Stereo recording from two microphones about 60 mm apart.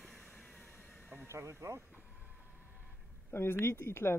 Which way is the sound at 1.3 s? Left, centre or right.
Right.